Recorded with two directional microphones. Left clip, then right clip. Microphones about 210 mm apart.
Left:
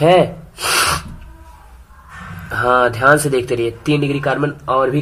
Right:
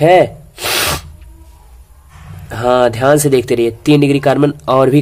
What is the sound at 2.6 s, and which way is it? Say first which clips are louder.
Speech: right 2 dB; 20° right (ahead or behind).